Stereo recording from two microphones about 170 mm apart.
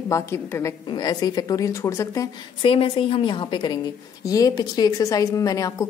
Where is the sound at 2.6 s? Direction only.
30° left (ahead or behind).